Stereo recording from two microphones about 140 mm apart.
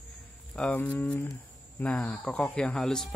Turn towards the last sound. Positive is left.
turn(degrees=5)  # may be behind; listen again after turning